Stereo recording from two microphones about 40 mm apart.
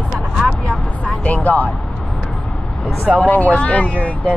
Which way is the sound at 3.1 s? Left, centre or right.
Left.